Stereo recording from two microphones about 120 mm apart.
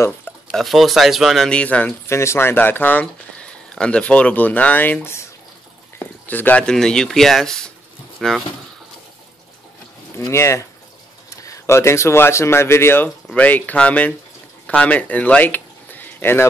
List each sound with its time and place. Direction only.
0.5 s speech: centre (ahead or behind)
10.1 s speech: 25° left (ahead or behind)